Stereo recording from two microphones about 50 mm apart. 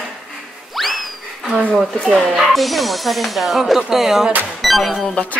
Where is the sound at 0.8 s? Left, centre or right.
Centre.